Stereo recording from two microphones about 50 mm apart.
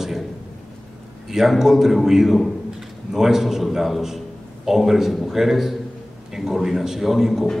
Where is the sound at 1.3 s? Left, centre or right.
Centre.